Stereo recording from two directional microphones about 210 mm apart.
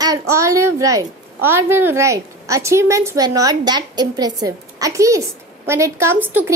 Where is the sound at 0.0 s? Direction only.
15° right (ahead or behind).